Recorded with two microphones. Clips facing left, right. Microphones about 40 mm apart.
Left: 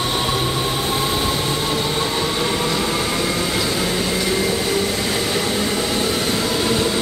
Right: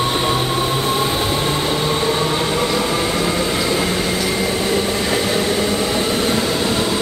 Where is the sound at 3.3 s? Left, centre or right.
Right.